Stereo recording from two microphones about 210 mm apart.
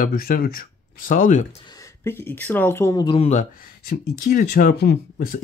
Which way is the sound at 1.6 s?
15° left (ahead or behind).